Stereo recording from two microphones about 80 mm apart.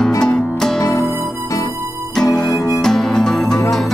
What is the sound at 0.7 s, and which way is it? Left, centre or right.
Music, left.